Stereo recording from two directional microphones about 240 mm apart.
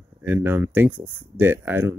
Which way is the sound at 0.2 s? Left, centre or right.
Centre.